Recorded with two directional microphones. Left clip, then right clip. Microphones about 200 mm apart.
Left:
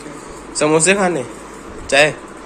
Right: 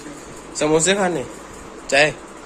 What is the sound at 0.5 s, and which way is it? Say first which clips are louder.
Speech: left 3 dB; 10° right (ahead or behind).